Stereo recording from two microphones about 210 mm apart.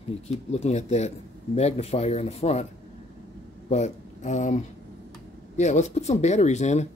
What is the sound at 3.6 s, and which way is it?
Speech, 35° left (ahead or behind).